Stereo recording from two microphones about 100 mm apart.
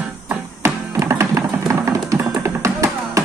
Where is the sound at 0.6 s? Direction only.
30° right (ahead or behind).